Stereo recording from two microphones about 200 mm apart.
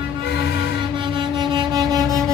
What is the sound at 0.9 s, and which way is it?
Music, 25° right (ahead or behind).